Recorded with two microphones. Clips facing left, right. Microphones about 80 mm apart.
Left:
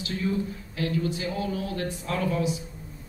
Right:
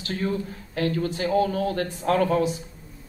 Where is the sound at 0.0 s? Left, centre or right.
Right.